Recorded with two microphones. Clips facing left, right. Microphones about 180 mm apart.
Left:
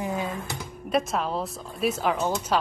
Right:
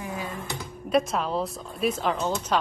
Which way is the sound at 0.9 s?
Centre (ahead or behind).